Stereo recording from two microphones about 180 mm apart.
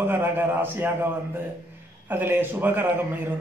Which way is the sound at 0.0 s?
10° right (ahead or behind).